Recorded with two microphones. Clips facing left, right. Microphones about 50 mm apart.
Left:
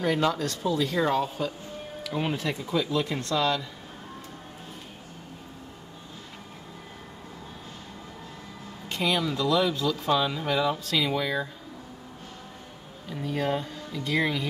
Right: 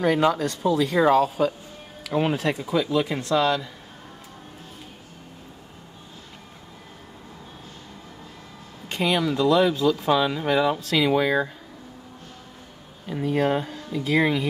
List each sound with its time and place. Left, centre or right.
0.0 s speech: centre
2.0 s speech: centre
8.8 s speech: centre
11.1 s speech: centre
13.1 s speech: centre